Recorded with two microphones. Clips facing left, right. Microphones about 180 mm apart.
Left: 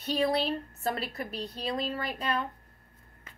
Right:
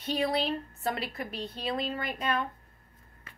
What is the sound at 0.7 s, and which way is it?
A woman's voice, 40° left (ahead or behind).